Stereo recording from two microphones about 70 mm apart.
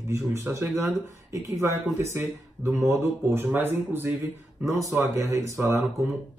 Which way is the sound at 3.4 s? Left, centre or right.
Right.